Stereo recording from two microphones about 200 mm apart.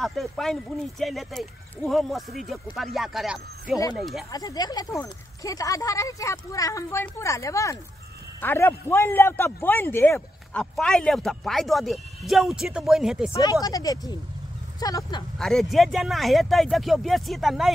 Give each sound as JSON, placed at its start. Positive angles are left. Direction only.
{"t": 0.0, "sound": "a man's voice", "side_deg": 0}
{"t": 3.7, "sound": "speech", "side_deg": 15}
{"t": 4.0, "sound": "a man's voice", "side_deg": 0}
{"t": 4.3, "sound": "a man's voice", "side_deg": 20}
{"t": 13.3, "sound": "speech", "side_deg": 20}
{"t": 15.3, "sound": "a man's voice", "side_deg": 0}